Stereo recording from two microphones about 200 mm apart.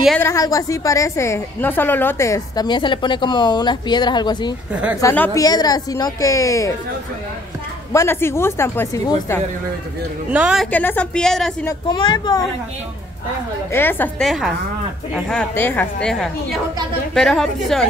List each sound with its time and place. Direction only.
0.2 s a woman's voice: 15° left (ahead or behind)
7.9 s a woman's voice: 15° left (ahead or behind)
10.3 s a woman's voice: 5° right (ahead or behind)
10.7 s a woman's voice: 10° left (ahead or behind)
11.9 s speech: 20° left (ahead or behind)
13.7 s a woman's voice: 10° left (ahead or behind)